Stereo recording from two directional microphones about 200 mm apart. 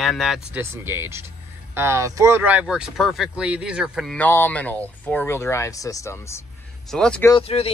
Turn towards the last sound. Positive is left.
turn(degrees=30)  # may be behind; listen again after turning